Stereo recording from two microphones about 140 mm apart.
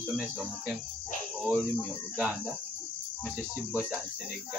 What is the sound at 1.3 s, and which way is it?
Speech, 10° right (ahead or behind).